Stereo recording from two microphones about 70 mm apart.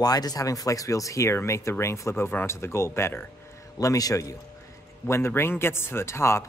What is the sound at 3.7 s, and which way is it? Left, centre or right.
Speech, left.